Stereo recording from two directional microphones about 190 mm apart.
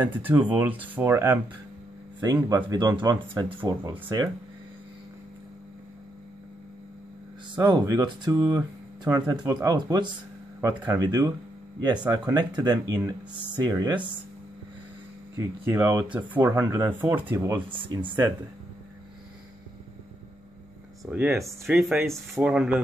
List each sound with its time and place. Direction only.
0.0 s speech: 10° right (ahead or behind)
7.5 s speech: 20° right (ahead or behind)
15.3 s speech: 10° right (ahead or behind)
17.6 s speech: 25° right (ahead or behind)
21.0 s speech: 10° right (ahead or behind)